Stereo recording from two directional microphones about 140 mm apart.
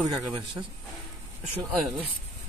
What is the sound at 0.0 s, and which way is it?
Speech, 30° right (ahead or behind).